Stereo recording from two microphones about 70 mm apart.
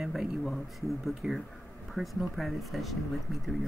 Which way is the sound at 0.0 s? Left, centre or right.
Centre.